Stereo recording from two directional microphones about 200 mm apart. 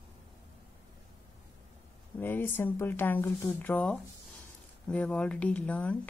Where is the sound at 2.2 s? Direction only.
10° left (ahead or behind).